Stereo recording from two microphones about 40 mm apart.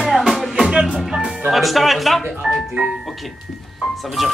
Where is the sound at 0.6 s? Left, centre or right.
Centre.